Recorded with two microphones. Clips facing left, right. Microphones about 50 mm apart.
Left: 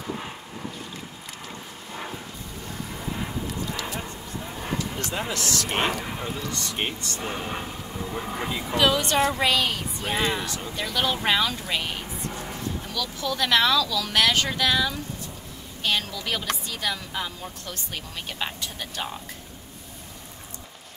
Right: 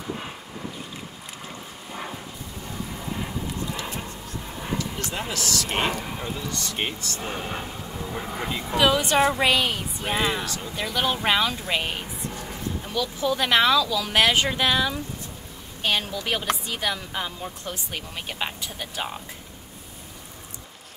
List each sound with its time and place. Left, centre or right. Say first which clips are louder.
2.9 s vehicle: left 1 dB; centre
5.7 s a woman's voice: left 1 dB; centre